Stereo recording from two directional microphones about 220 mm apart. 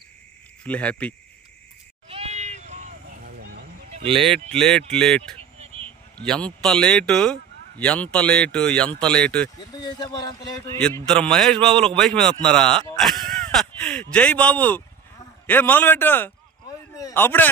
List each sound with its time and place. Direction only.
0.7 s a man's voice: 5° left (ahead or behind)
2.0 s a sound: 25° right (ahead or behind)
4.2 s a man's voice: centre (ahead or behind)
5.4 s a sound: 25° right (ahead or behind)
6.1 s a man's voice: 5° left (ahead or behind)
9.6 s speech: 20° left (ahead or behind)
10.8 s a man's voice: 5° left (ahead or behind)